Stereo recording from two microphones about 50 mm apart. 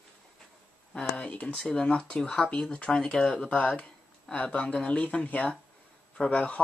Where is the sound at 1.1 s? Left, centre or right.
Left.